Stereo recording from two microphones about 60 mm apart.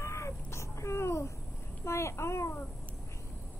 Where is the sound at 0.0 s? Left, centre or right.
Left.